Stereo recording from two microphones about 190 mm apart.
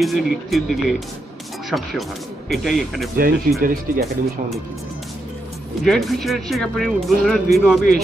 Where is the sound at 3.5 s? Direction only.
50° right (ahead or behind).